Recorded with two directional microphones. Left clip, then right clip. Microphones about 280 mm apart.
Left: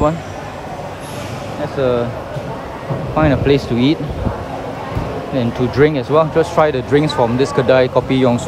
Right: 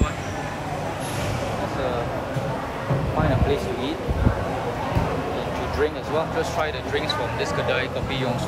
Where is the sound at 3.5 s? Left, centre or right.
Left.